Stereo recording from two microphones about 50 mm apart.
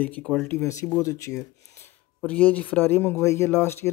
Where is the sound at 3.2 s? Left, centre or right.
Left.